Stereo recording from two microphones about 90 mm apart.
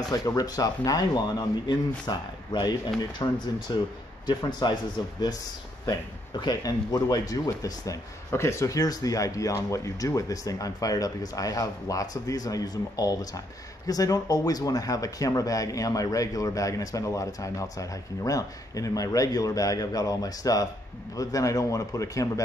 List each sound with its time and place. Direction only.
0.1 s speech: 45° left (ahead or behind)